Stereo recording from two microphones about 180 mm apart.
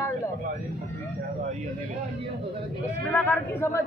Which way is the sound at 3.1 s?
10° left (ahead or behind).